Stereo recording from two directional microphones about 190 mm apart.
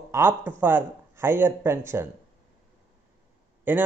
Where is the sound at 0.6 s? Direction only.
10° right (ahead or behind).